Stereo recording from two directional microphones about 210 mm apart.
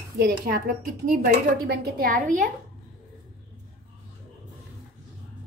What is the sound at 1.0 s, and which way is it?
A woman's voice, 40° right (ahead or behind).